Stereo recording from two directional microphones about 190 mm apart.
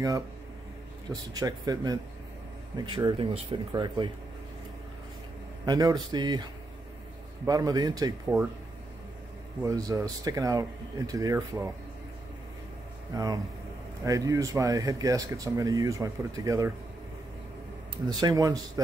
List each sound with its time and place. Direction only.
1.3 s a man's voice: 20° right (ahead or behind)
5.7 s a man's voice: 20° right (ahead or behind)
9.6 s speech: 20° right (ahead or behind)
13.1 s speech: 15° right (ahead or behind)
18.0 s a man's voice: 20° right (ahead or behind)